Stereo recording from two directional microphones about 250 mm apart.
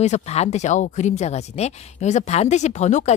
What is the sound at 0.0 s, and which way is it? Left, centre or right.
Speech, left.